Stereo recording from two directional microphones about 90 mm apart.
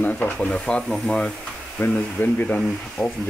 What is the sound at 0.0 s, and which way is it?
Speech, 15° left (ahead or behind).